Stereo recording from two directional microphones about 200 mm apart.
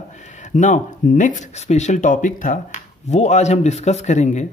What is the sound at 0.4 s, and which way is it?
Speech, 40° left (ahead or behind).